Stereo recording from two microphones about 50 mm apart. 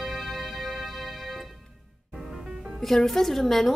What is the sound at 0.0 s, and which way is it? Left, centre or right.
Music, centre.